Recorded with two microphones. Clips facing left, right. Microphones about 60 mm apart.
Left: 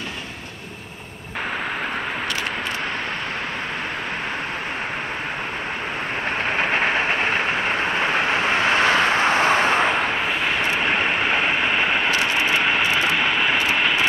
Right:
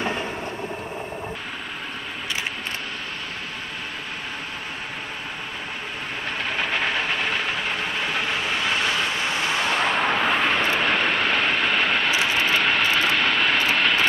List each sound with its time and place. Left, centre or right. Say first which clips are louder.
6.5 s train: left 4 dB; left
9.9 s vehicle: right 1 dB; centre